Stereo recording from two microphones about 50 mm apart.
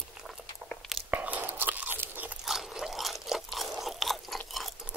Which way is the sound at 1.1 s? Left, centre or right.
Right.